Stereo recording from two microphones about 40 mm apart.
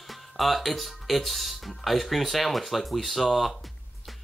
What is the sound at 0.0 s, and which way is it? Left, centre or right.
Speech, centre.